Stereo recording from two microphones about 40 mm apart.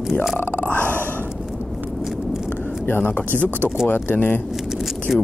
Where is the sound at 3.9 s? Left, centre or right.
Left.